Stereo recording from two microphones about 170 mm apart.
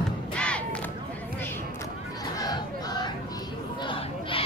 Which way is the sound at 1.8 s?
20° left (ahead or behind).